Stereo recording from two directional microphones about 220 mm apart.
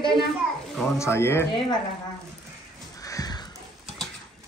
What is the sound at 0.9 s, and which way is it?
Speech, 10° left (ahead or behind).